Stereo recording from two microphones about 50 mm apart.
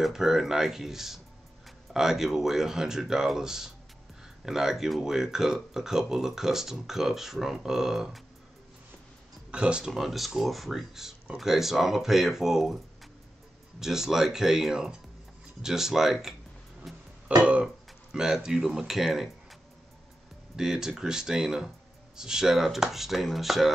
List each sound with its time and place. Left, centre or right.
0.0 s speech: centre
9.5 s speech: right
9.8 s speech: centre
13.7 s speech: centre
16.9 s music: centre
17.4 s speech: right
18.1 s speech: centre
20.5 s speech: centre